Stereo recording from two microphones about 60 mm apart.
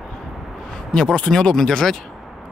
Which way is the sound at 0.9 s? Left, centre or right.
Centre.